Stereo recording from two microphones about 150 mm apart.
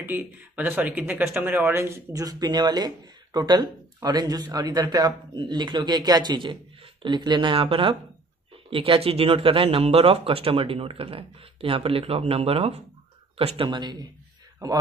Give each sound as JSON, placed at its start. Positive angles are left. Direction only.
{"t": 0.0, "sound": "speech", "side_deg": -15}
{"t": 13.7, "sound": "speech", "side_deg": -30}